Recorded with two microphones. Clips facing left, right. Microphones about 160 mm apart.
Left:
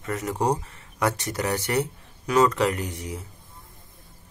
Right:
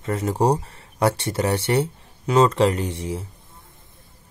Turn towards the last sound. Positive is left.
turn(degrees=-30)  # may be behind; listen again after turning